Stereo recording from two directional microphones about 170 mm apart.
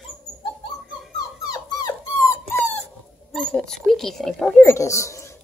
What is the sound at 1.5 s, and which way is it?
Dog, 20° left (ahead or behind).